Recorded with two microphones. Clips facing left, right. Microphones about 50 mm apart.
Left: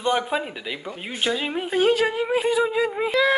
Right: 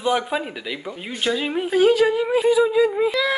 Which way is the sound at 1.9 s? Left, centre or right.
Left.